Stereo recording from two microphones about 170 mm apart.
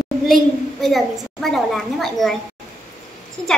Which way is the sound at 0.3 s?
Centre (ahead or behind).